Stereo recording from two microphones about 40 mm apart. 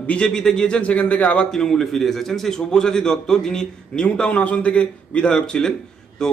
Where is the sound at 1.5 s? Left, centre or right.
Centre.